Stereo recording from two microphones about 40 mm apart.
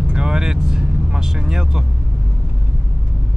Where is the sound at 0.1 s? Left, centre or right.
Centre.